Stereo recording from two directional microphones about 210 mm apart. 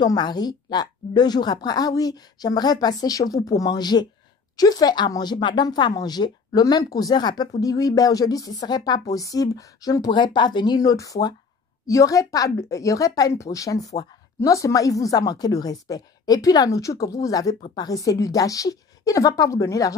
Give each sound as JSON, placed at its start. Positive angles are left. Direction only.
{"t": 0.0, "sound": "a woman's voice", "side_deg": 20}
{"t": 17.6, "sound": "a woman's voice", "side_deg": 30}
{"t": 17.8, "sound": "a woman's voice", "side_deg": 15}